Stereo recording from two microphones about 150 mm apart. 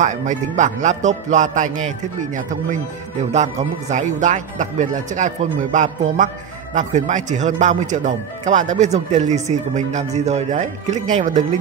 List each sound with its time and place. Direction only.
0.0 s a man's voice: 55° right (ahead or behind)